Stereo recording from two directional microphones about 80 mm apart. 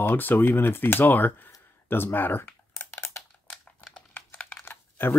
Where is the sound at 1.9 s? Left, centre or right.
Left.